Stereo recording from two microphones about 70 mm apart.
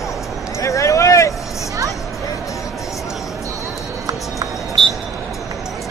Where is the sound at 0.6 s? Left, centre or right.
Left.